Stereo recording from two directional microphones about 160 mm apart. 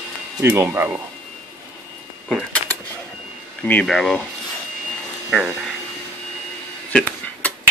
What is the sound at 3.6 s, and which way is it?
Speech, 10° left (ahead or behind).